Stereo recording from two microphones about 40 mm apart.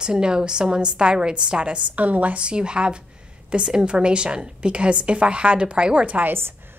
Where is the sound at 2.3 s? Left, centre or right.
Right.